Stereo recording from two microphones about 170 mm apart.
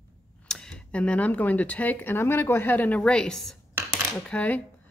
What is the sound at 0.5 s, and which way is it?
Speech, 5° left (ahead or behind).